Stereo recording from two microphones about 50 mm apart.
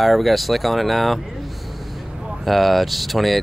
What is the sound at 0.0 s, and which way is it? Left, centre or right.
Speech, centre.